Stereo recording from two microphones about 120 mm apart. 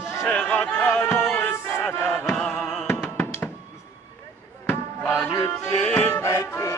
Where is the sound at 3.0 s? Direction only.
20° left (ahead or behind).